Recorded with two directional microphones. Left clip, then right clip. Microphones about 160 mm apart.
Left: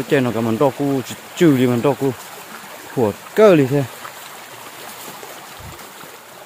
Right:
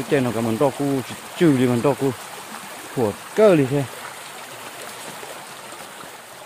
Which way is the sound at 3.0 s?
25° left (ahead or behind).